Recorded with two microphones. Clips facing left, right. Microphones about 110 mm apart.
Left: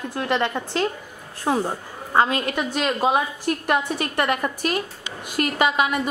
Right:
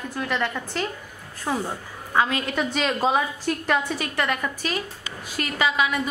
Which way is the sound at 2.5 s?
5° left (ahead or behind).